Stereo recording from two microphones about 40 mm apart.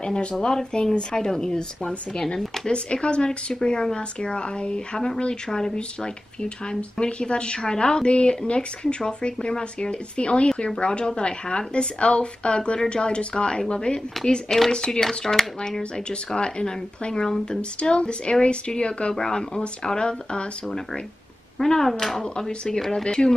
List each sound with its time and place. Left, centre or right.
0.0 s a woman's voice: left
2.6 s a woman's voice: left; by 15.4 s centre
16.3 s a woman's voice: left; by 22.2 s centre
22.2 s speech: left
23.0 s a woman's voice: left